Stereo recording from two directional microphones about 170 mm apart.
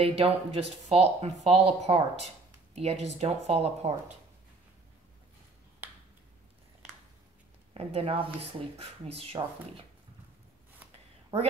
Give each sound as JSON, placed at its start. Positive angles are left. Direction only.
{"t": 0.0, "sound": "speech", "side_deg": -35}
{"t": 7.7, "sound": "speech", "side_deg": -35}